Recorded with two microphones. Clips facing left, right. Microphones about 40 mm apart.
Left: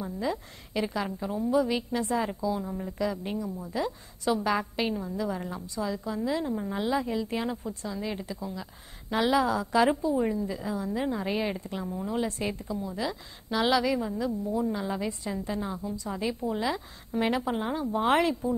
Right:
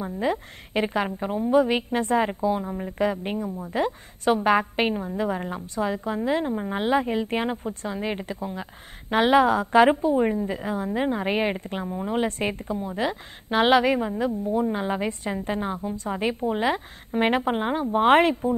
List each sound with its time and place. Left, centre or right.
0.0 s a woman's voice: right